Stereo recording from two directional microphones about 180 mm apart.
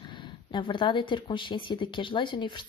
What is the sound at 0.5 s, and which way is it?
Speech, 25° left (ahead or behind).